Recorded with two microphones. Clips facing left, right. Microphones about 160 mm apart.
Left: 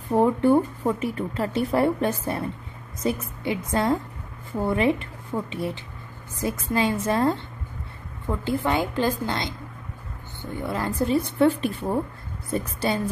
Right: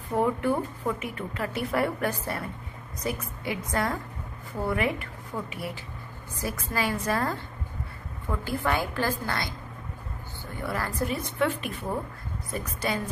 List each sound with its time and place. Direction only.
0.1 s a woman's voice: 30° left (ahead or behind)